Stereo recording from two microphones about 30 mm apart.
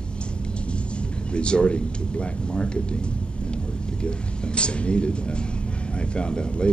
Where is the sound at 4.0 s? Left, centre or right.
Left.